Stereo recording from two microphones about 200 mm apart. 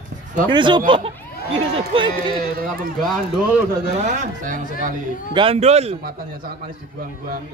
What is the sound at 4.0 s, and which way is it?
Speech, 40° right (ahead or behind).